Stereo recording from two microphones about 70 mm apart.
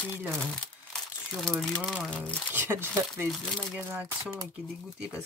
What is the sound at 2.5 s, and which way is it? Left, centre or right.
Speech, right.